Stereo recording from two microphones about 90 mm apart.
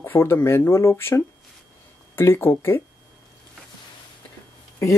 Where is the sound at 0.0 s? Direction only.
25° left (ahead or behind).